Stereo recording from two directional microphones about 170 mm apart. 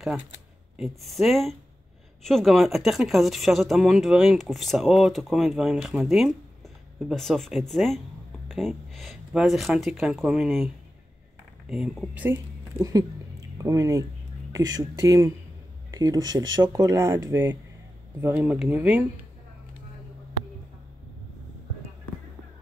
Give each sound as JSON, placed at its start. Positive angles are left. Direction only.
{"t": 0.7, "sound": "speech", "side_deg": 0}
{"t": 11.7, "sound": "speech", "side_deg": -5}